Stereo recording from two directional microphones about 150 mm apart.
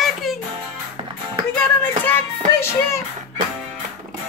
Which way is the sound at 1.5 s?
10° left (ahead or behind).